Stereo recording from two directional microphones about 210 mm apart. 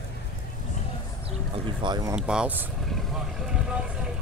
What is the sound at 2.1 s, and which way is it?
Speech, 5° right (ahead or behind).